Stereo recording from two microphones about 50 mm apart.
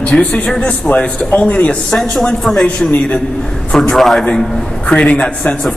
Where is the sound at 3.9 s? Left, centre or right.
Centre.